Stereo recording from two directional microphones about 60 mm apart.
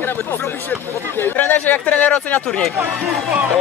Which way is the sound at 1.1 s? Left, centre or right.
Left.